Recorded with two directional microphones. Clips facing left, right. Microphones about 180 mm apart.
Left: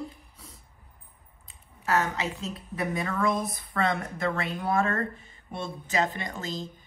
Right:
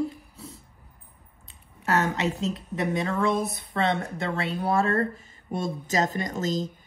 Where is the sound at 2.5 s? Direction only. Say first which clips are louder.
Right 4 dB; 25° right (ahead or behind).